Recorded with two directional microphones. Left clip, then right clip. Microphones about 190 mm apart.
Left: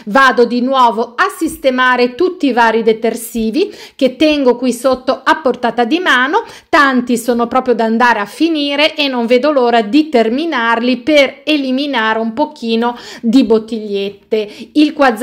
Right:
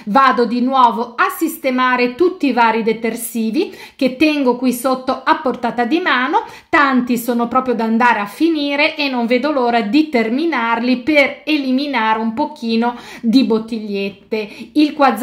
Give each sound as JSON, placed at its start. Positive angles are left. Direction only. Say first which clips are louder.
{"t": 0.1, "sound": "a woman's voice", "louder": "left 3 dB", "side_deg": 40}